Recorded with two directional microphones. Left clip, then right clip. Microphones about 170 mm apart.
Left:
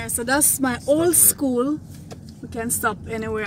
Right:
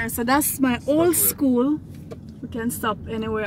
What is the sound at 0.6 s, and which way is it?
Speech, 25° right (ahead or behind).